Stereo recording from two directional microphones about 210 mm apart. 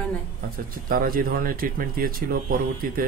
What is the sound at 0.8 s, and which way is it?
Speech, 45° right (ahead or behind).